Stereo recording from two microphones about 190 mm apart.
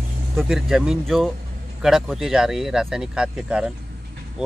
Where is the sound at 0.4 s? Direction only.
Centre (ahead or behind).